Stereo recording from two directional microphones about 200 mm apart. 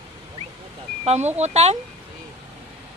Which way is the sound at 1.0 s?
35° right (ahead or behind).